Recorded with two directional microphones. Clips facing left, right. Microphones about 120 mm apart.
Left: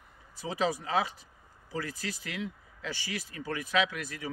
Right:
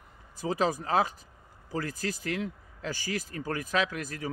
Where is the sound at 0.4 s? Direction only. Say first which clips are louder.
Right 3 dB; 45° right (ahead or behind).